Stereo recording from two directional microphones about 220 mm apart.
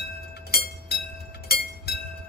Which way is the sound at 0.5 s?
45° left (ahead or behind).